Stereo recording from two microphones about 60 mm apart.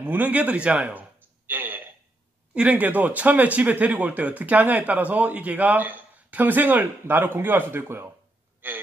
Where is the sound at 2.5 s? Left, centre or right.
Right.